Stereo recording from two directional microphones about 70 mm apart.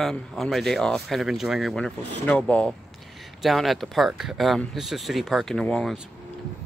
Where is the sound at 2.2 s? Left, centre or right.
Centre.